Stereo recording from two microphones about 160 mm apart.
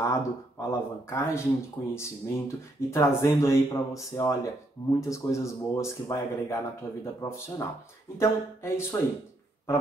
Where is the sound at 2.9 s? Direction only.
20° left (ahead or behind).